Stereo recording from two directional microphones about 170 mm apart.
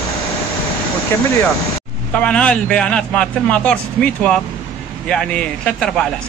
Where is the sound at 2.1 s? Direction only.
5° left (ahead or behind).